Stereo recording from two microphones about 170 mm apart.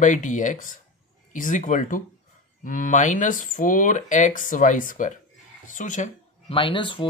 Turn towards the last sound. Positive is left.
turn(degrees=30)  # may be behind; listen again after turning